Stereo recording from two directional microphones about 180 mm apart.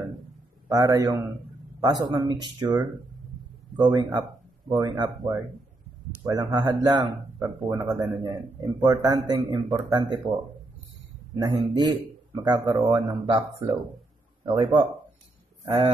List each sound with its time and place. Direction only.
0.7 s speech: 20° right (ahead or behind)
3.7 s speech: 20° right (ahead or behind)
11.4 s speech: 25° right (ahead or behind)